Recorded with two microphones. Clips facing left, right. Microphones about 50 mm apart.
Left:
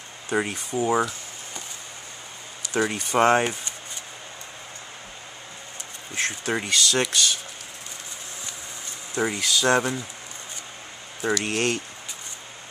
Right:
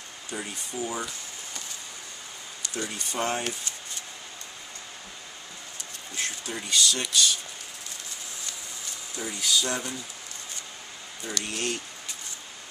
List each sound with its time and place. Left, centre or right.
0.3 s speech: left
2.7 s speech: left
6.1 s speech: left
9.1 s speech: left
11.4 s speech: left